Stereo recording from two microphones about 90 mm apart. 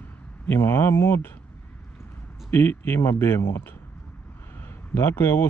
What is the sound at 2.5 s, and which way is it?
Speech, 25° left (ahead or behind).